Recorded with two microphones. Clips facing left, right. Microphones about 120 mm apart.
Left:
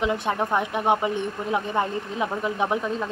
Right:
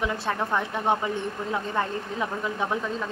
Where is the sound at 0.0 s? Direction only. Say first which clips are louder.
Left 3 dB; 20° left (ahead or behind).